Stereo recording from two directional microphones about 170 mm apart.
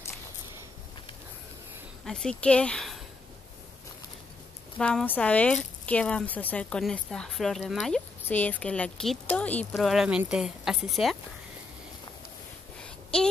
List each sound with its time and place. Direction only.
2.0 s speech: 5° left (ahead or behind)
4.7 s speech: 5° left (ahead or behind)
12.8 s a sound: 5° left (ahead or behind)